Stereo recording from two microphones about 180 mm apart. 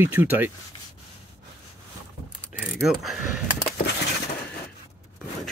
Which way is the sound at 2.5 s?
5° right (ahead or behind).